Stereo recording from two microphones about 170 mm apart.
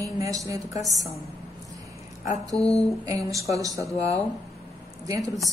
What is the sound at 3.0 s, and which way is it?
Speech, 20° right (ahead or behind).